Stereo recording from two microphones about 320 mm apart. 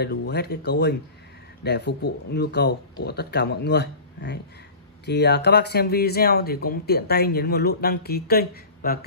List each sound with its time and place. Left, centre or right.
0.3 s speech: left